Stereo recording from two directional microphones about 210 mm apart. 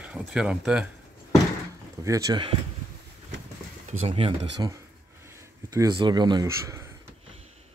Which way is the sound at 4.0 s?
25° right (ahead or behind).